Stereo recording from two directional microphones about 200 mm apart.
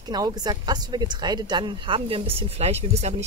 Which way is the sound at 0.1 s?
20° right (ahead or behind).